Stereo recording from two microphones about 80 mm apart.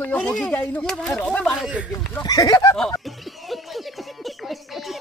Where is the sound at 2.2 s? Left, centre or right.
Left.